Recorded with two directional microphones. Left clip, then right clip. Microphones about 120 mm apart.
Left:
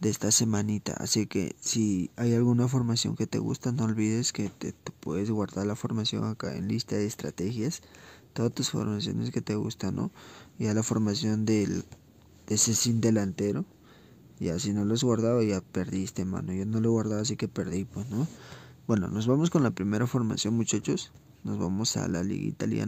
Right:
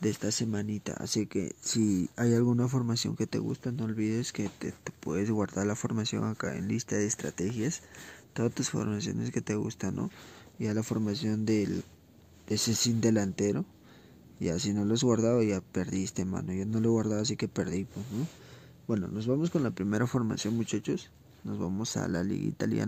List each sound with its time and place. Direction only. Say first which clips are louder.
0.0 s speech: left 5 dB; 30° left (ahead or behind)
0.9 s speech: left 3 dB; 25° left (ahead or behind)
1.3 s speech: left 2 dB; 40° left (ahead or behind)
1.7 s speech: even; 10° left (ahead or behind)
2.3 s speech: left 3 dB; 25° left (ahead or behind)
3.7 s speech: left 3 dB; 45° left (ahead or behind)
4.2 s speech: left 3 dB; 25° left (ahead or behind)
5.0 s speech: even; 10° left (ahead or behind)
12.4 s speech: left 2 dB; 15° left (ahead or behind)
18.5 s speech: left 4 dB; 50° left (ahead or behind)
19.9 s speech: left 1 dB; 15° left (ahead or behind)
22.3 s speech: even; 5° left (ahead or behind)